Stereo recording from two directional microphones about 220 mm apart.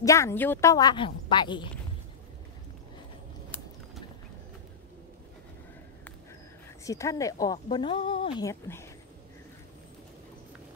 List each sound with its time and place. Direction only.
0.0 s a woman's voice: 15° left (ahead or behind)
6.8 s a woman's voice: 15° left (ahead or behind)